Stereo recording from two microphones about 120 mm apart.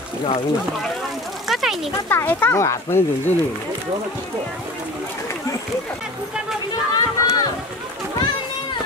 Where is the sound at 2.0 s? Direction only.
15° left (ahead or behind).